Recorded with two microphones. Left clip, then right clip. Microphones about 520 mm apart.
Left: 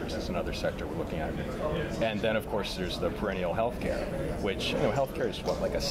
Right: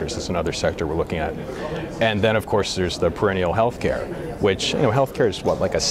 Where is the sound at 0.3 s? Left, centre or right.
Right.